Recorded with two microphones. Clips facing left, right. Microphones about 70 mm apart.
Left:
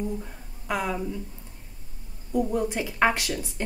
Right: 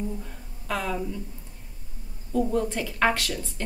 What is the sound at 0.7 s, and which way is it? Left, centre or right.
Speech, centre.